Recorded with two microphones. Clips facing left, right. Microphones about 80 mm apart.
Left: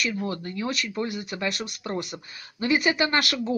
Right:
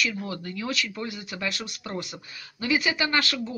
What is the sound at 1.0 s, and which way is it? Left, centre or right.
Speech, left.